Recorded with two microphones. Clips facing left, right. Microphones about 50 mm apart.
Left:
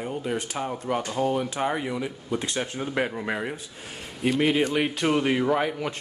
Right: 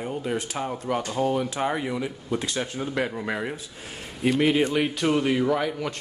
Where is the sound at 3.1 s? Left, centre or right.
Centre.